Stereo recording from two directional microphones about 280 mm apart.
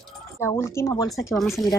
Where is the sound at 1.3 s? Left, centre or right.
Centre.